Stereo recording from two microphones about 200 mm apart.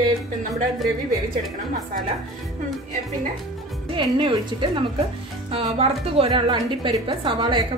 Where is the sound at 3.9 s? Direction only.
25° right (ahead or behind).